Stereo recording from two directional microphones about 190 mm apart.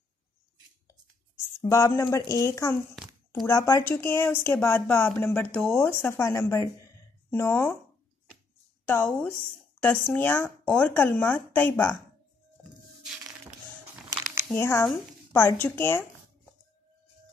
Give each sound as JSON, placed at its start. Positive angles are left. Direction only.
{"t": 1.6, "sound": "speech", "side_deg": 15}
{"t": 8.8, "sound": "speech", "side_deg": 10}
{"t": 14.5, "sound": "speech", "side_deg": 15}